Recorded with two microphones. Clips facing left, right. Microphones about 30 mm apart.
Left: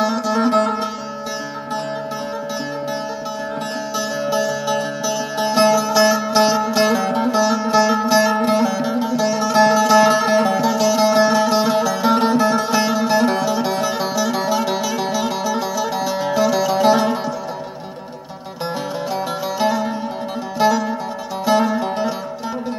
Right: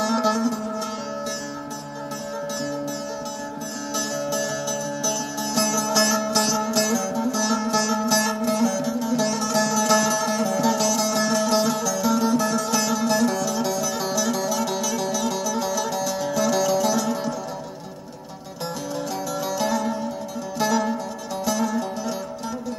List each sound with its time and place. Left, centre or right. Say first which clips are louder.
4.2 s music: left 6 dB; left
7.1 s music: left 6 dB; left
7.4 s music: left 6 dB; left
9.1 s music: left 5 dB; centre; by 10.6 s left
10.6 s music: left 5 dB; centre
16.0 s music: left 5 dB; left
19.4 s zither: left 4 dB; left
20.6 s music: left 5 dB; left